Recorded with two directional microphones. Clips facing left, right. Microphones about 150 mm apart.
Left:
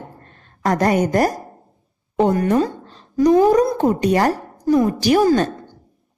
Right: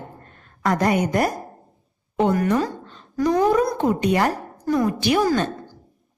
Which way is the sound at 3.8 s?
40° left (ahead or behind).